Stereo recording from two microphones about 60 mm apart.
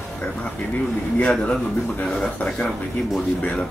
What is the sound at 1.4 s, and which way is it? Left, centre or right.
Speech, centre.